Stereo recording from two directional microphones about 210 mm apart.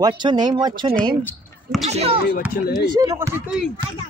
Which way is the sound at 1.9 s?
30° right (ahead or behind).